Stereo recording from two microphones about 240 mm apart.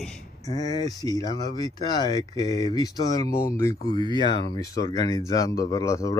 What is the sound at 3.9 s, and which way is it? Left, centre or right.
Speech, right.